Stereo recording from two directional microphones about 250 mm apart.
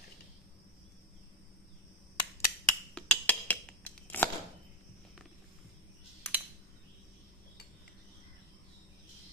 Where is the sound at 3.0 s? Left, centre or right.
Centre.